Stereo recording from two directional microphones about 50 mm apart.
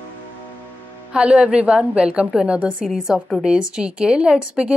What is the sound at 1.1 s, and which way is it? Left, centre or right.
Speech, centre.